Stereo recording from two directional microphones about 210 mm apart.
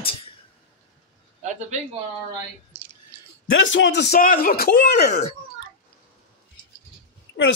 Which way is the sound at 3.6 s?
60° left (ahead or behind).